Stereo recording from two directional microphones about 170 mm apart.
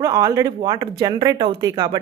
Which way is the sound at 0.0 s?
20° right (ahead or behind).